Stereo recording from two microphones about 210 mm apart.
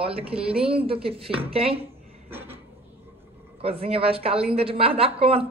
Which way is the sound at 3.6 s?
25° right (ahead or behind).